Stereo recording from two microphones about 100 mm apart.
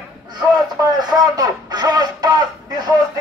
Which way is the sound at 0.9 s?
40° right (ahead or behind).